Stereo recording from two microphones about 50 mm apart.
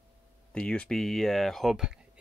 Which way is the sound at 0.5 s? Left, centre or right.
Left.